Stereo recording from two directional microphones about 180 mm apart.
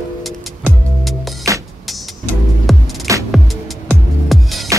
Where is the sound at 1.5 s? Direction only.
20° right (ahead or behind).